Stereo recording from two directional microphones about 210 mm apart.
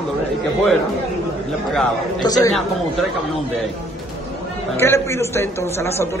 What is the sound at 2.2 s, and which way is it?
Speech, 20° left (ahead or behind).